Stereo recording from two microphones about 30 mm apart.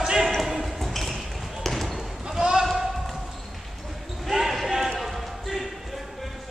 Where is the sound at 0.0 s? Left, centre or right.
Centre.